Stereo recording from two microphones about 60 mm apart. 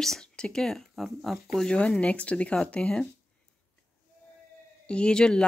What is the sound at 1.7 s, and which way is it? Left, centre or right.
Speech, centre.